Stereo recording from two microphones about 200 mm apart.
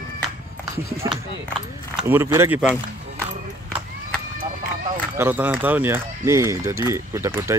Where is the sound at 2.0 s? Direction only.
10° right (ahead or behind).